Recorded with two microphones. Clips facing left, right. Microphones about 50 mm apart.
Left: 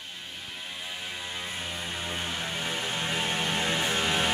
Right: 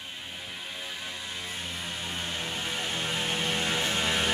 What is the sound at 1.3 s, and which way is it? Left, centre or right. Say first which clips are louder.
Music: left 1 dB; centre.